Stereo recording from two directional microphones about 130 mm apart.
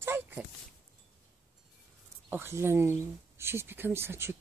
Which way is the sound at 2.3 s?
20° right (ahead or behind).